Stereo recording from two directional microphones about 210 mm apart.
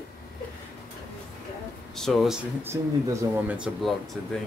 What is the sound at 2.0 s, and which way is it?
Speech, centre (ahead or behind).